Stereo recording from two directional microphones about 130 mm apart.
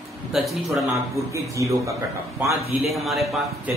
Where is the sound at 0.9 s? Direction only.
25° right (ahead or behind).